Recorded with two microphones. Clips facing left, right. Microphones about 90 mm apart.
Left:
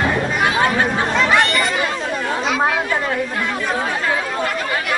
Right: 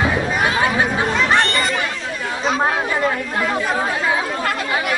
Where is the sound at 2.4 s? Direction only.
35° right (ahead or behind).